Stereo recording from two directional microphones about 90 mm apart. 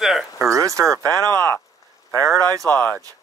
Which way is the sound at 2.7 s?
20° left (ahead or behind).